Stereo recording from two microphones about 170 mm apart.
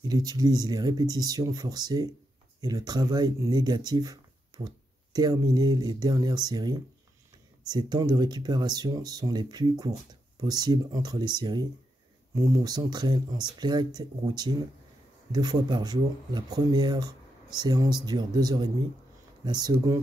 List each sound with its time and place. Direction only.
0.0 s speech: 20° right (ahead or behind)